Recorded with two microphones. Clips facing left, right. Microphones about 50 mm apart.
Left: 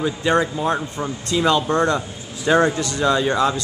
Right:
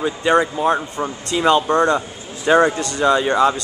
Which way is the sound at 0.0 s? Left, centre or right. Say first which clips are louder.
Right 2 dB; centre.